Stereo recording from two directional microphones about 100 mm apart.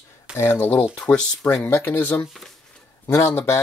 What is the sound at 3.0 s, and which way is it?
Speech, 30° left (ahead or behind).